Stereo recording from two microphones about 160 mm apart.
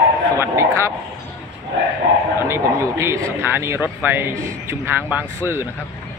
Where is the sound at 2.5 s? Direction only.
20° right (ahead or behind).